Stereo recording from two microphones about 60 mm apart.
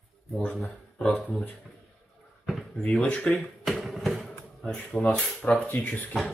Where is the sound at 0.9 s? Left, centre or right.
Centre.